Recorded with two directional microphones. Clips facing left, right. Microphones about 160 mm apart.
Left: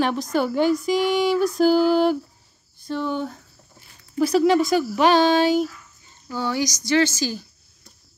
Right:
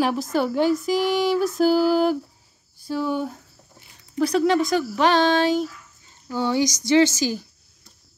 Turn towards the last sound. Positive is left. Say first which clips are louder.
# right 3 dB
turn(degrees=-20)  # may be behind; listen again after turning